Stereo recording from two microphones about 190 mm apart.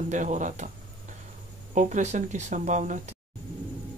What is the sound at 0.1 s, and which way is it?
Speech, 40° right (ahead or behind).